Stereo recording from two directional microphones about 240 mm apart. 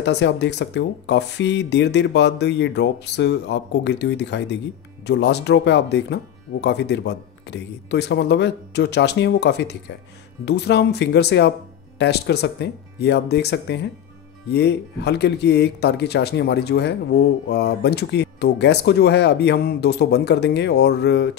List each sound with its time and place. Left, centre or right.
0.0 s speech: left